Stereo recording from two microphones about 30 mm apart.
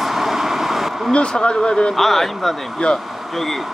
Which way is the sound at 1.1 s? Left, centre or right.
Left.